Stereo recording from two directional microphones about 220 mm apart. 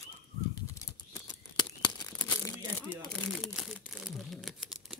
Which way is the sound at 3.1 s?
5° left (ahead or behind).